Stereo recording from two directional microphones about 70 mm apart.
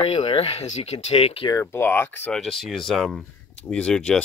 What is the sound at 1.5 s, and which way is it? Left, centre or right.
Speech, left.